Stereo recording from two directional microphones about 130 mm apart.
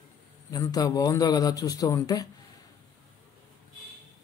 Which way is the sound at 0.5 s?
30° left (ahead or behind).